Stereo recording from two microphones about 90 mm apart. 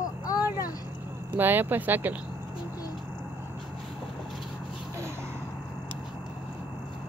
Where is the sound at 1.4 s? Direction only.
20° right (ahead or behind).